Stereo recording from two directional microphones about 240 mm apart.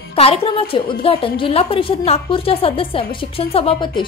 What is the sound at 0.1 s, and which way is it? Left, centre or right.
A woman's voice, left.